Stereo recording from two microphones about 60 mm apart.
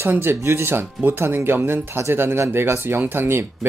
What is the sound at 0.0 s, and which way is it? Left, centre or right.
Speech, right.